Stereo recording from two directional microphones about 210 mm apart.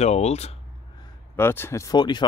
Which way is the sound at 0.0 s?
30° left (ahead or behind).